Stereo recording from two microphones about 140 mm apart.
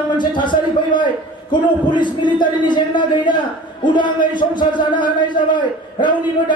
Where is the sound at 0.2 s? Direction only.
35° left (ahead or behind).